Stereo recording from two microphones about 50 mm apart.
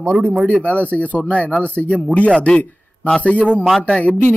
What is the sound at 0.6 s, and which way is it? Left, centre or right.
Speech, left.